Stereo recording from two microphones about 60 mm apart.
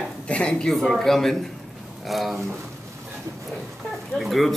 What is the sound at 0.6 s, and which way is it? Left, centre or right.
Speech, centre.